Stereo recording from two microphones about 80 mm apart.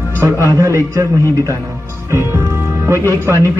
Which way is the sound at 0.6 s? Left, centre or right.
Right.